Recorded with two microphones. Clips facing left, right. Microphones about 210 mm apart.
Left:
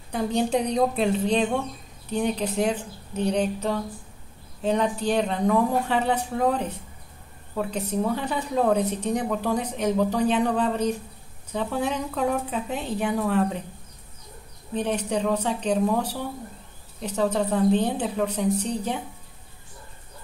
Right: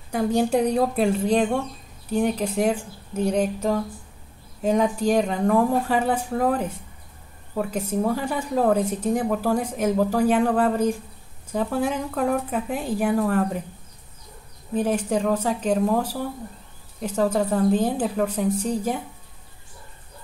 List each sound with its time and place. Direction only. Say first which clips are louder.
0.1 s a woman's voice: right 3 dB; 10° right (ahead or behind)
14.7 s a woman's voice: right 3 dB; 5° right (ahead or behind)